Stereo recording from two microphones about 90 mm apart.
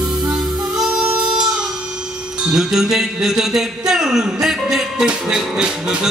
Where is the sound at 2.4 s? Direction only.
5° right (ahead or behind).